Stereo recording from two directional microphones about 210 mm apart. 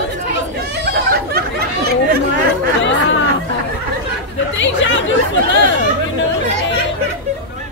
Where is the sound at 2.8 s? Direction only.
60° left (ahead or behind).